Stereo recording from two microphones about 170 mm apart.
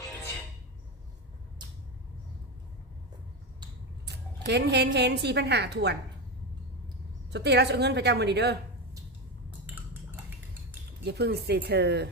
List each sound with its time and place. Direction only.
4.5 s a woman's voice: 80° right
7.2 s a woman's voice: 80° right
11.1 s speech: 75° right (ahead or behind)